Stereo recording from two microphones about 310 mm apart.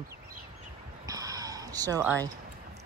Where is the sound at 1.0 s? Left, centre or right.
Centre.